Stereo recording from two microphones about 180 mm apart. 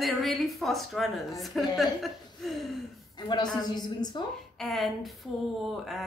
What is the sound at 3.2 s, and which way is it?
A woman's voice, 25° left (ahead or behind).